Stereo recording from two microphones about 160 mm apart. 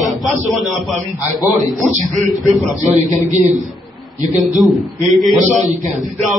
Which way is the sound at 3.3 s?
50° right (ahead or behind).